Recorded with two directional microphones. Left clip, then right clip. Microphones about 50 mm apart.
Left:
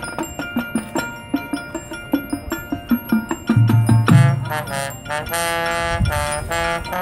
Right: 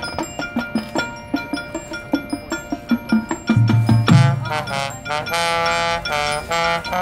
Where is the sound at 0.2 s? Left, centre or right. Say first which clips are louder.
Left 1 dB; left.